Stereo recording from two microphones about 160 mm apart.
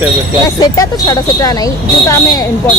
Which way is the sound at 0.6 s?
25° left (ahead or behind).